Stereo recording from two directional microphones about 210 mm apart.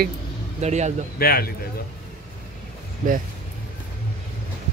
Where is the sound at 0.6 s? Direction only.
35° right (ahead or behind).